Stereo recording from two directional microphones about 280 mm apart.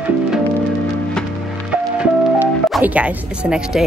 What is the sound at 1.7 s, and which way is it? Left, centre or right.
Speech, centre.